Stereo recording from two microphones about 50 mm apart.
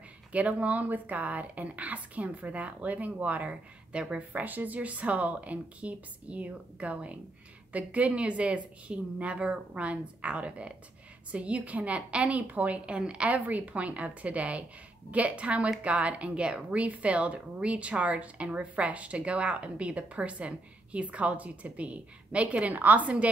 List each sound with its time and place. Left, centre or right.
0.3 s speech: right
4.3 s a woman's voice: right